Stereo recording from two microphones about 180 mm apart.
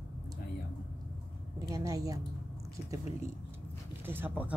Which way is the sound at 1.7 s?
20° right (ahead or behind).